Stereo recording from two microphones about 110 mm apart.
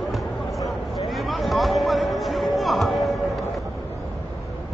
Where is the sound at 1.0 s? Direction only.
Centre (ahead or behind).